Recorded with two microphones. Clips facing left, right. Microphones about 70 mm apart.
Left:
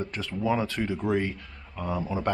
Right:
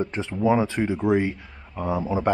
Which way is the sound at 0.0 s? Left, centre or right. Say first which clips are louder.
Right 6 dB; right.